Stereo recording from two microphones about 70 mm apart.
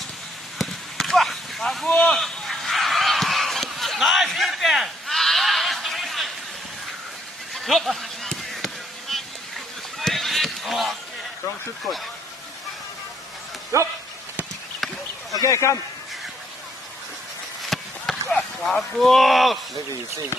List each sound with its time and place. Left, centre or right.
0.6 s a sound: centre
7.5 s a sound: centre
9.9 s run: centre
13.7 s speech: right
15.3 s a man's voice: left
17.6 s chop: centre